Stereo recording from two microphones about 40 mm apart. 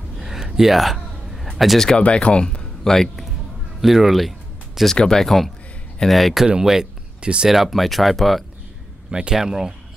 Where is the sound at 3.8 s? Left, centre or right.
Centre.